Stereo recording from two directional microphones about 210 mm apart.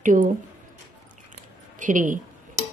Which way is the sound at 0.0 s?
40° right (ahead or behind).